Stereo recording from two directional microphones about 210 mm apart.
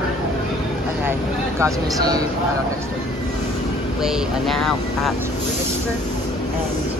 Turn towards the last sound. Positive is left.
turn(degrees=0)  # may be behind; listen again after turning